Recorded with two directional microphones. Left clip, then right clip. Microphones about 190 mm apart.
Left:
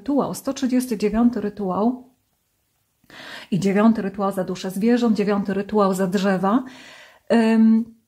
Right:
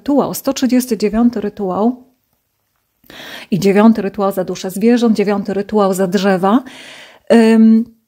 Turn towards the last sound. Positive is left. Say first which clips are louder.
# right 8 dB
turn(degrees=-35)  # may be behind; listen again after turning